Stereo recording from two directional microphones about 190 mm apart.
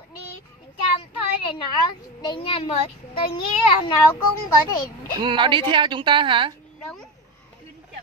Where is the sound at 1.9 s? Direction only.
25° left (ahead or behind).